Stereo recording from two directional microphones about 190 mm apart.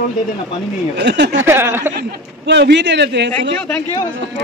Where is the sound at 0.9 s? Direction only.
65° right (ahead or behind).